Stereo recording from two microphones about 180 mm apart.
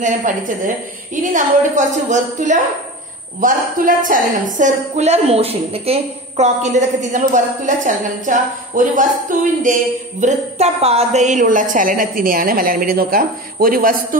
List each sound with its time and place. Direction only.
0.0 s a woman's voice: 45° right (ahead or behind)
10.2 s a woman's voice: 35° right (ahead or behind); by 13.9 s 50° right (ahead or behind)